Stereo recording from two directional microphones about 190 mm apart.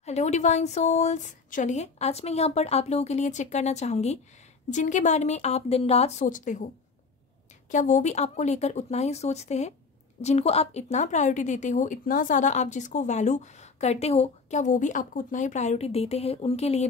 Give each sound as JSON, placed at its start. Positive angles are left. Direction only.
{"t": 0.0, "sound": "a woman's voice", "side_deg": 35}
{"t": 7.7, "sound": "a woman's voice", "side_deg": 40}